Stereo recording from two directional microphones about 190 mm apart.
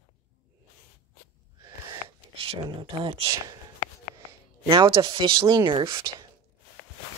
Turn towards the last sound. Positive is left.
turn(degrees=-25)  # may be behind; listen again after turning